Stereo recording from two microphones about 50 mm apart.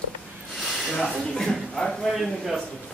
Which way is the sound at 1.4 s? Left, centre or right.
Centre.